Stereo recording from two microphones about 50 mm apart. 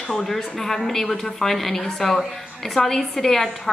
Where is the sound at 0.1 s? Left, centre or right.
Centre.